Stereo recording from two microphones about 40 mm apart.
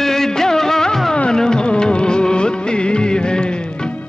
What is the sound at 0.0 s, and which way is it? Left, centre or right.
Music of bollywood, centre.